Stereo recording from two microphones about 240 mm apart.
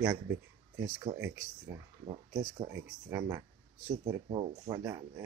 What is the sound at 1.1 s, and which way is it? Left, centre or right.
Speech, centre.